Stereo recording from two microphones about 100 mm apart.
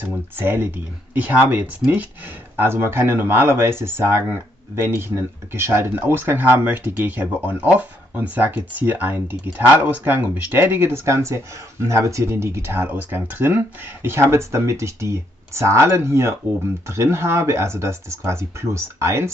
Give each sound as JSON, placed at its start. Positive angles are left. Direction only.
{"t": 0.4, "sound": "speech", "side_deg": -20}